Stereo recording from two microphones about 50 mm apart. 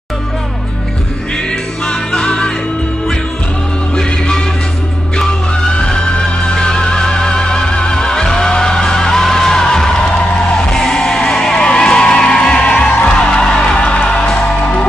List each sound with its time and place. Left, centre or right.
1.9 s music: centre
5.8 s music: centre